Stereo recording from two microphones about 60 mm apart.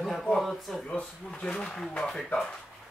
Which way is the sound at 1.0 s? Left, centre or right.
Centre.